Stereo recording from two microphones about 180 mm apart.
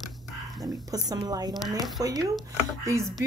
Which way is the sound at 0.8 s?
20° right (ahead or behind).